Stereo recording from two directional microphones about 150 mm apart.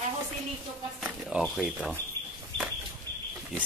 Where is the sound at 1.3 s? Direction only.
5° right (ahead or behind).